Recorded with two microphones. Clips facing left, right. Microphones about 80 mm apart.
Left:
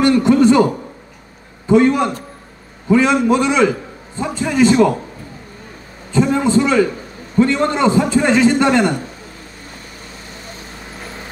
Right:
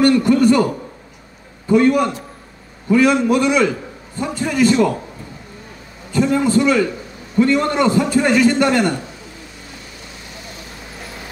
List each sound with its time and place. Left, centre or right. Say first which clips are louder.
0.0 s a sound: left 1 dB; left
1.7 s a man's voice: left 1 dB; left
6.1 s a man's voice: left 1 dB; left